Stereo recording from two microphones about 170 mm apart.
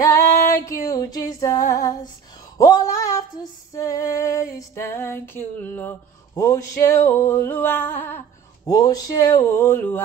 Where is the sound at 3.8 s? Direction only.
15° left (ahead or behind).